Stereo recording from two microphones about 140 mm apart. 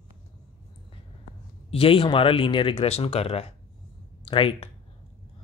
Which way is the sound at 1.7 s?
40° left (ahead or behind).